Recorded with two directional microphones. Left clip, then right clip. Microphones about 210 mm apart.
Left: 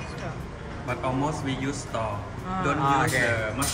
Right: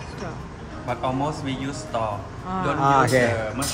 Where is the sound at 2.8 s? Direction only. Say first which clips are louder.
Right 6 dB; 30° right (ahead or behind).